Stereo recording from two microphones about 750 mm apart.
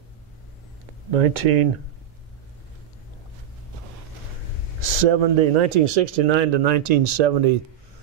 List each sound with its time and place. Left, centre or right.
1.1 s speech: right
4.7 s speech: right